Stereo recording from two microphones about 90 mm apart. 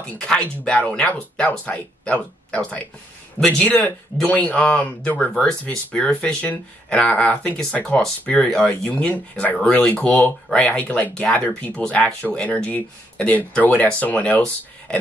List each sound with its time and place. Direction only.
0.2 s speech: 10° left (ahead or behind)
5.3 s speech: 5° left (ahead or behind)